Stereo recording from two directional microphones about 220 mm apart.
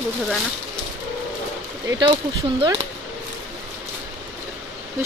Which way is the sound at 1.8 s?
20° right (ahead or behind).